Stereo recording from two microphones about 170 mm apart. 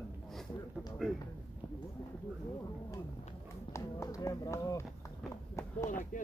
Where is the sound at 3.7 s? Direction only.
15° left (ahead or behind).